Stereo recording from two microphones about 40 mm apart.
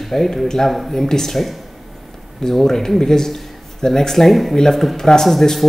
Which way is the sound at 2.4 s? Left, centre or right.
Centre.